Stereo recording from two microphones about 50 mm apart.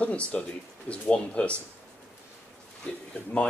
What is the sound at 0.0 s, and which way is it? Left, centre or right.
Speech, left.